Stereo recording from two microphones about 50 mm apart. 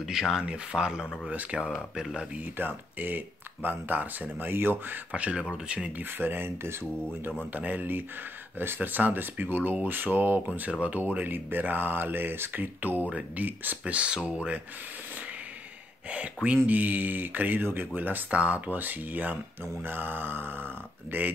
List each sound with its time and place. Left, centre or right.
0.0 s speech: centre
1.3 s speech: right
2.0 s speech: centre
2.3 s speech: right
5.1 s speech: right
5.9 s speech: right
7.5 s speech: right
10.7 s speech: right
13.9 s speech: right
16.6 s speech: right
18.3 s speech: right